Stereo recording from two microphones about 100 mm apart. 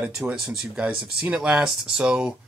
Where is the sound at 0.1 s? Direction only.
5° right (ahead or behind).